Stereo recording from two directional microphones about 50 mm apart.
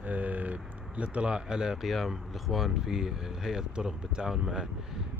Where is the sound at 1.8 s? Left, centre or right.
Centre.